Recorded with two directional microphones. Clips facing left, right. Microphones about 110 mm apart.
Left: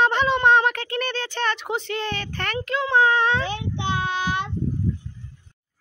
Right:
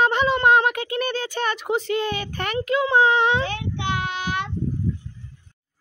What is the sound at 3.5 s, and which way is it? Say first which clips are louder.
Child singing: even; 30° left (ahead or behind).